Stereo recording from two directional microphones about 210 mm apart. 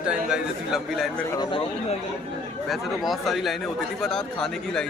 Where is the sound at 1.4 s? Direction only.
25° left (ahead or behind).